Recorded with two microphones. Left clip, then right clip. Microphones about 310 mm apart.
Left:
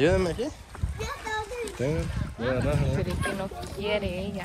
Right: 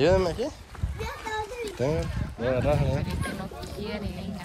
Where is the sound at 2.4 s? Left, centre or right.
Centre.